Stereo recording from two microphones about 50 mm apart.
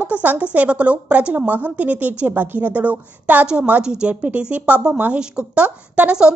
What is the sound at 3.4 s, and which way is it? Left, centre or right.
Speech, centre.